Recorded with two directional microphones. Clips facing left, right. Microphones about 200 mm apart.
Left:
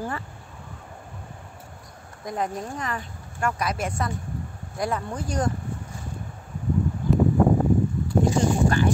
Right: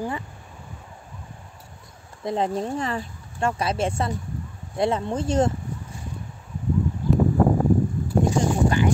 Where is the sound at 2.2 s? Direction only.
25° right (ahead or behind).